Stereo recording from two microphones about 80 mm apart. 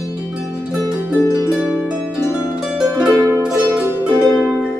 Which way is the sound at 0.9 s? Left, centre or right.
Right.